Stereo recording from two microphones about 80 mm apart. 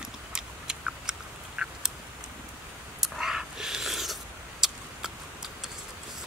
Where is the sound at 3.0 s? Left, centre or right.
Centre.